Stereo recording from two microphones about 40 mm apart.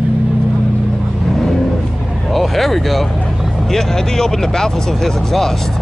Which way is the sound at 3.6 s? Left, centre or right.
Centre.